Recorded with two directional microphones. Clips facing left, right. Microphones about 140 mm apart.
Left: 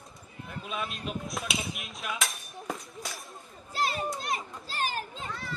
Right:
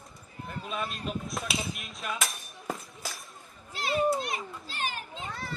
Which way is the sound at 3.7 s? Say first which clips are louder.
Right 4 dB; 40° left (ahead or behind).